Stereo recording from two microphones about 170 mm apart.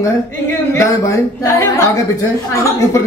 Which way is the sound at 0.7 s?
15° left (ahead or behind).